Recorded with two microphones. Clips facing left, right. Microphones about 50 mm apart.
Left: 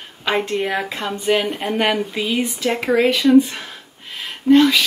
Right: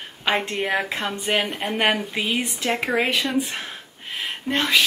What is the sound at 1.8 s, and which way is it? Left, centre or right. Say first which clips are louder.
Speech: left 1 dB; centre.